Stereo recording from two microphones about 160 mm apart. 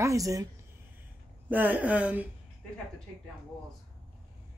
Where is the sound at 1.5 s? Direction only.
10° right (ahead or behind).